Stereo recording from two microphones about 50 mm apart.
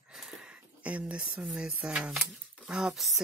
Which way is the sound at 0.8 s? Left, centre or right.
Right.